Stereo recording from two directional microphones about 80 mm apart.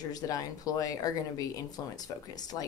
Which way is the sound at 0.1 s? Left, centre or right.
Left.